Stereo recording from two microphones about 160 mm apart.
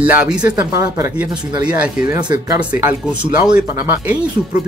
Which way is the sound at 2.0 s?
25° right (ahead or behind).